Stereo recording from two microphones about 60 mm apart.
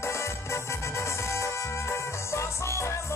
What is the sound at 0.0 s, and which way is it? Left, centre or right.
Music, left.